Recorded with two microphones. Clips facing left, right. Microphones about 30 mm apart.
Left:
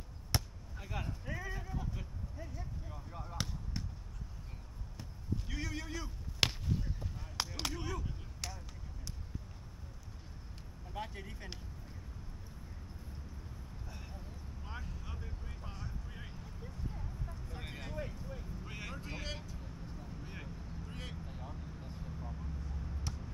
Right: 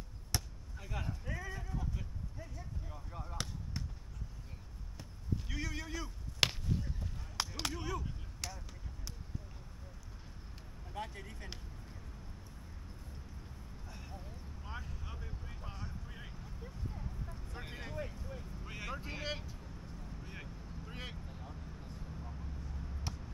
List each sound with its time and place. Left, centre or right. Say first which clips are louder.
0.3 s basketball bounce: left 2 dB; left
0.7 s a sound: even; centre
5.5 s a sound: even; centre
10.9 s speech: even; centre
13.8 s vehicle: right 2 dB; centre
18.9 s vehicle: right 2 dB; centre
19.6 s vehicle: left 2 dB; centre
20.8 s vehicle: right 2 dB; centre
21.3 s vehicle: left 2 dB; centre